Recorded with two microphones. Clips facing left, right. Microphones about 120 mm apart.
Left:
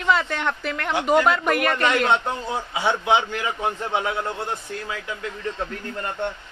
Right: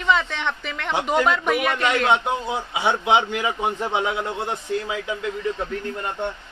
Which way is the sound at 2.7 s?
20° right (ahead or behind).